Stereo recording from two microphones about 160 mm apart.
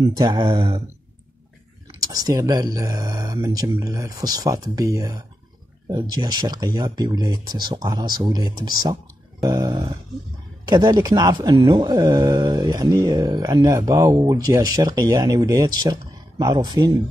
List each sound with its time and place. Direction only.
0.0 s speech: 25° right (ahead or behind)
2.0 s speech: 25° right (ahead or behind)